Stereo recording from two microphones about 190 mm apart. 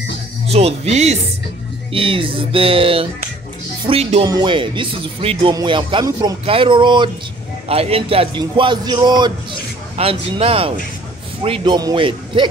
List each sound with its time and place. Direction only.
0.5 s a man's voice: 35° right (ahead or behind)